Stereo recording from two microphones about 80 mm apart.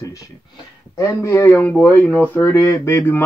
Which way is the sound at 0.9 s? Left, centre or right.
Left.